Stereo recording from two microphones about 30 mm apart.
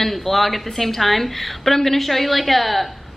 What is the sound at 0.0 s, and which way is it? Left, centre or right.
A woman's voice, centre.